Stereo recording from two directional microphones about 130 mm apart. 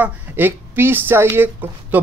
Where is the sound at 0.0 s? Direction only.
15° right (ahead or behind).